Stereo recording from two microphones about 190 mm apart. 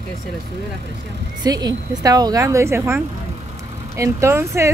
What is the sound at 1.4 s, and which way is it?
A woman's voice, 20° right (ahead or behind).